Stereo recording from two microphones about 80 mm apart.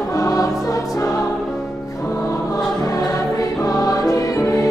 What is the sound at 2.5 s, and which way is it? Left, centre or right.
Choir, left.